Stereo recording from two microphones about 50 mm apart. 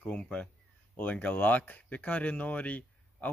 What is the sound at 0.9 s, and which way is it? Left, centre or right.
Speech, left.